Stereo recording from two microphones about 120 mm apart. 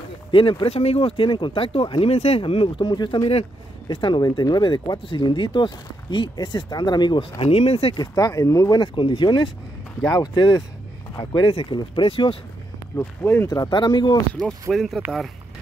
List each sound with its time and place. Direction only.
0.3 s speech: 45° left (ahead or behind)
7.9 s speech: 35° left (ahead or behind)
10.0 s speech: 25° left (ahead or behind)
10.3 s speech: 40° left (ahead or behind)
12.9 s speech: 20° left (ahead or behind)
13.5 s speech: 35° left (ahead or behind)
14.7 s speech: centre (ahead or behind)